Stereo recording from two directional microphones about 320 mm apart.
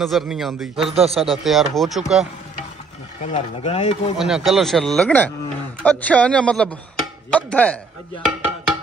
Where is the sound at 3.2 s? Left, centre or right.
Left.